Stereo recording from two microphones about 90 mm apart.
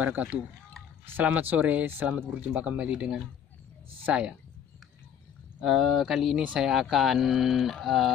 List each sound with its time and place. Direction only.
0.0 s speech: 15° right (ahead or behind)
5.6 s speech: centre (ahead or behind)